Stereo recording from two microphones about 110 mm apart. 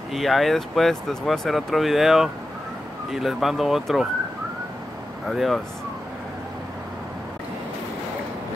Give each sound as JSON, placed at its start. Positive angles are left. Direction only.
{"t": 0.1, "sound": "speech", "side_deg": 0}
{"t": 5.3, "sound": "speech", "side_deg": 0}